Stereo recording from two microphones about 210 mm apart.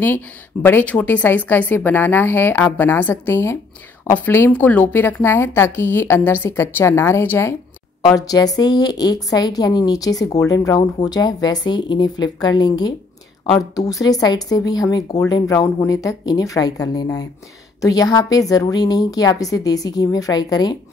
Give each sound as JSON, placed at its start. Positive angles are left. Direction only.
{"t": 0.0, "sound": "a woman's voice", "side_deg": 10}